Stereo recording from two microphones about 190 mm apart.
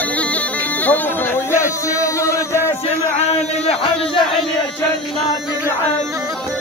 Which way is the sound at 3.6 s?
30° left (ahead or behind).